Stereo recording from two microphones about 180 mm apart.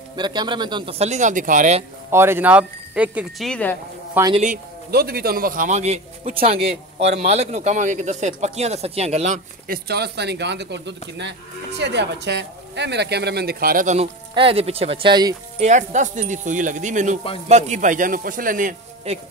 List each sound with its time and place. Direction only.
0.1 s a man's voice: 25° right (ahead or behind); by 1.9 s 40° right (ahead or behind)
2.0 s speech: 15° right (ahead or behind); by 3.7 s 5° left (ahead or behind)
4.2 s speech: 10° right (ahead or behind)
4.9 s a man's voice: 60° right (ahead or behind); by 9.4 s 40° right (ahead or behind)
9.7 s speech: 65° right (ahead or behind)
13.9 s a man's voice: 30° right (ahead or behind)
15.6 s a man's voice: 40° right (ahead or behind)